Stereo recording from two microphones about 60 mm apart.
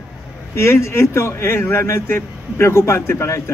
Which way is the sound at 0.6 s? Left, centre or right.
Left.